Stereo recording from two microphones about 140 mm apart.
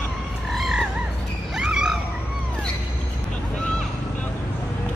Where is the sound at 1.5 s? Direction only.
5° right (ahead or behind).